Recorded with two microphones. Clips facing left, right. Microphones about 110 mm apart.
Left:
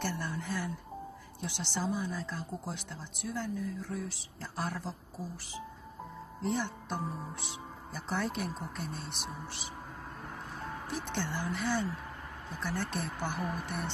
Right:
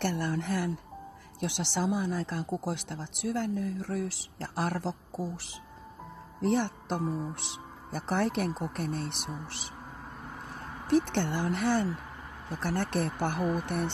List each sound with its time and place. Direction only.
0.0 s speech: 65° right (ahead or behind)
6.4 s speech: 70° right (ahead or behind)
10.9 s speech: 65° right (ahead or behind)